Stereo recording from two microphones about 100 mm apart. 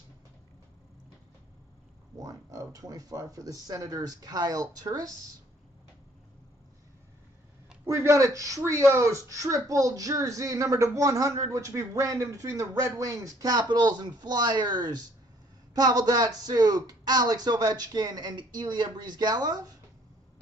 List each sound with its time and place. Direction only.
2.1 s a man's voice: 35° right (ahead or behind)
7.9 s a man's voice: 30° right (ahead or behind)